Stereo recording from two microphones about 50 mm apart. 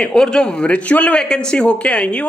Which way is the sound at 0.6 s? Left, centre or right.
Left.